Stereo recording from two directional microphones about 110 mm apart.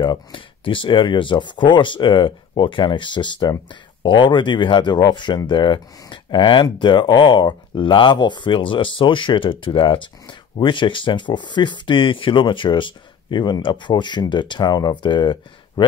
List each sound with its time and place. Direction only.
0.0 s speech: 50° left (ahead or behind)